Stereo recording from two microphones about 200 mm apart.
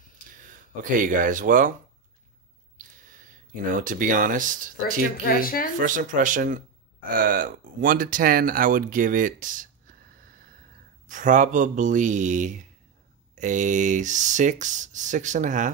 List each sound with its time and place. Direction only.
0.8 s speech: 40° right (ahead or behind)
3.7 s speech: 40° right (ahead or behind)
5.2 s speech: 45° left (ahead or behind)
5.8 s speech: 40° right (ahead or behind)